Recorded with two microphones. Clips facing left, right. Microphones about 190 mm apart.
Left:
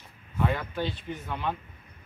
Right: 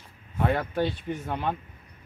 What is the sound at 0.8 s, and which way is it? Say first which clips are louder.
Speech: right 4 dB; 50° right (ahead or behind).